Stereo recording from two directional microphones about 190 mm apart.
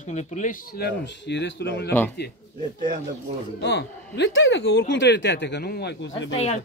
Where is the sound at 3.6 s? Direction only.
65° left (ahead or behind).